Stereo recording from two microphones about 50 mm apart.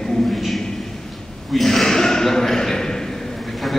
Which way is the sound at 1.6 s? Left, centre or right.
Centre.